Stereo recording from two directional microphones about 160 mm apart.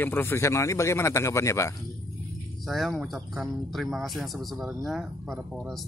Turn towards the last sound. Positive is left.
turn(degrees=0)  # may be behind; listen again after turning